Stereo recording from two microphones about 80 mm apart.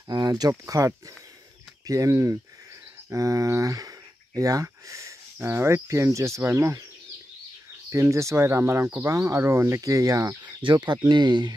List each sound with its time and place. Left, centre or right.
0.1 s speech: right
7.9 s speech: right
9.8 s speech: right
10.4 s speech: right